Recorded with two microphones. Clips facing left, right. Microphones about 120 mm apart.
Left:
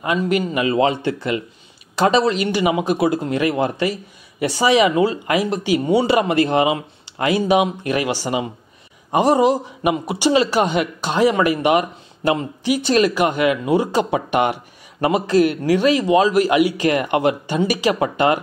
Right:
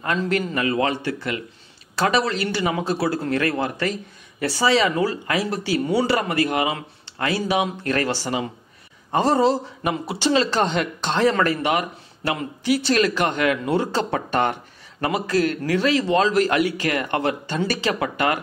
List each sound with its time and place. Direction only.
0.0 s a man's voice: 10° left (ahead or behind)
17.9 s speech: 25° left (ahead or behind)